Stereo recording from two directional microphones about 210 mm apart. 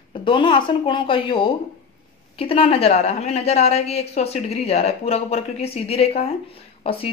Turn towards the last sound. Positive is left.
turn(degrees=25)  # may be behind; listen again after turning